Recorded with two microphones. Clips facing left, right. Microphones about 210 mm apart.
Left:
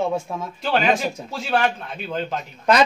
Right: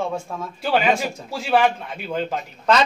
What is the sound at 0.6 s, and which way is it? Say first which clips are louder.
Speech: right 1 dB; 10° right (ahead or behind).